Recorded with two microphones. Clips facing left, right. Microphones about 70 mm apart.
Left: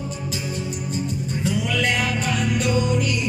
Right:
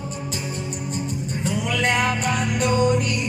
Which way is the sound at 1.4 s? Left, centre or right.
Right.